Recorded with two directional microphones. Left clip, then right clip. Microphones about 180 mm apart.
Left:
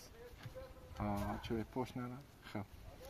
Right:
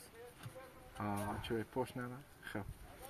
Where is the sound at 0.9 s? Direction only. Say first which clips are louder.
Even; 40° left (ahead or behind).